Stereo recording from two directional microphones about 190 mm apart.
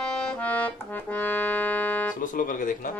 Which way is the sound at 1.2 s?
10° left (ahead or behind).